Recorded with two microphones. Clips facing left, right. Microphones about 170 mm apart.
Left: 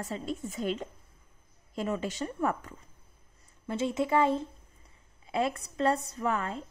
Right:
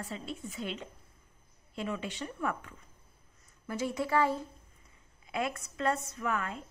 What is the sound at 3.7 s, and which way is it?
A woman's voice, 25° left (ahead or behind).